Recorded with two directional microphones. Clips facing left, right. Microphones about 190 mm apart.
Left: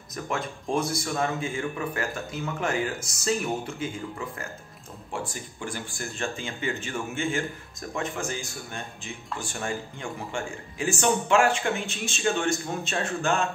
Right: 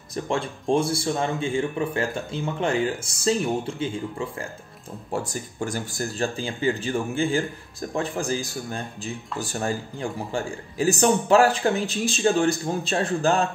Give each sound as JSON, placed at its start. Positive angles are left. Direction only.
{"t": 0.1, "sound": "a man's voice", "side_deg": -30}
{"t": 5.1, "sound": "speech", "side_deg": -40}